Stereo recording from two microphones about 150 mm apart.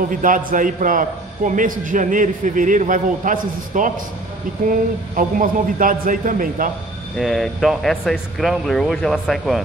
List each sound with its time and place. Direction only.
0.1 s a man's voice: 65° right (ahead or behind)
5.1 s a man's voice: 65° right (ahead or behind)
7.2 s speech: centre (ahead or behind)